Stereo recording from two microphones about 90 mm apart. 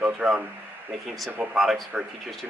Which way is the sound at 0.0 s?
10° right (ahead or behind).